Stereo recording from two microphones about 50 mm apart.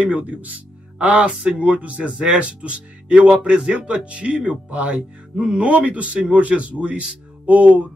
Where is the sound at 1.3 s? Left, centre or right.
Centre.